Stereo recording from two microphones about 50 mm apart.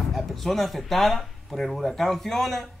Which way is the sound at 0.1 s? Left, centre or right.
Centre.